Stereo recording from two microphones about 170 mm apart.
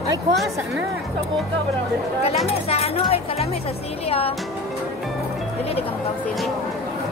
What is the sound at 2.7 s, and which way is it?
Speech, 35° left (ahead or behind).